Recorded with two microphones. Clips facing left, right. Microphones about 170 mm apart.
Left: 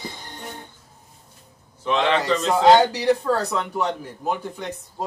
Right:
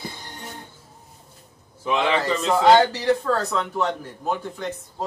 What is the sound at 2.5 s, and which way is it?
A man's voice, 15° left (ahead or behind).